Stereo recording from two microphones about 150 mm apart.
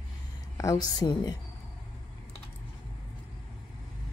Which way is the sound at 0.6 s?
25° left (ahead or behind).